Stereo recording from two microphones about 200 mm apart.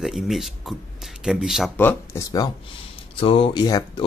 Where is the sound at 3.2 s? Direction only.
25° left (ahead or behind).